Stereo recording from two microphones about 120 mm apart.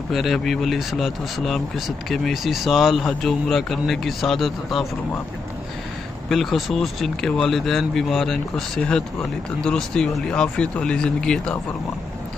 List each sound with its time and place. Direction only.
0.1 s speech: centre (ahead or behind)
6.2 s speech: centre (ahead or behind)